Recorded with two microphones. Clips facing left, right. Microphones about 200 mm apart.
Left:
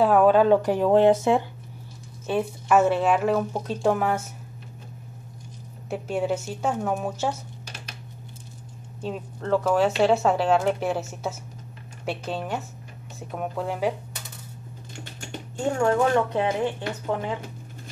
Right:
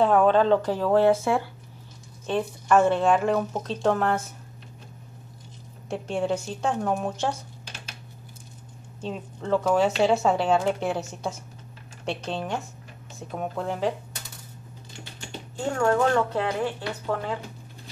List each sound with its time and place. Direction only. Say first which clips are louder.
0.0 s speech: left 2 dB; 5° left (ahead or behind); by 1.4 s 20° left (ahead or behind)
2.2 s speech: left 1 dB; 5° left (ahead or behind)
5.9 s a woman's voice: left 1 dB; 5° left (ahead or behind)
9.0 s a woman's voice: left 1 dB; centre (ahead or behind)
15.8 s speech: even; 20° left (ahead or behind)